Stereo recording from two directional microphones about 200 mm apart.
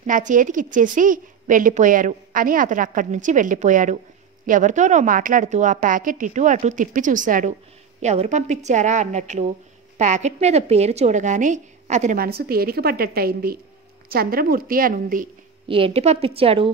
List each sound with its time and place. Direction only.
0.0 s a woman's voice: 40° right (ahead or behind)
15.7 s a woman's voice: 30° right (ahead or behind)